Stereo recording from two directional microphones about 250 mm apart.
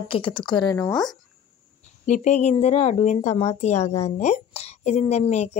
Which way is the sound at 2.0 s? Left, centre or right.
Left.